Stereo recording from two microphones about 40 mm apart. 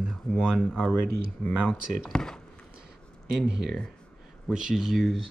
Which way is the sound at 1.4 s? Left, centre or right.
Left.